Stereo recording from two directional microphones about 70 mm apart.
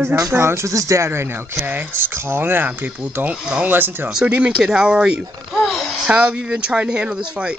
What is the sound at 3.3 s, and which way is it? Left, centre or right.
Speech, centre.